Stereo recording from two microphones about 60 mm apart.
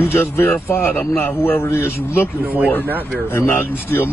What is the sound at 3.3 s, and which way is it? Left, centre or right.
Speech, left.